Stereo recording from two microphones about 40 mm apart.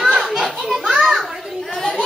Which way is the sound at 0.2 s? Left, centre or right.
Centre.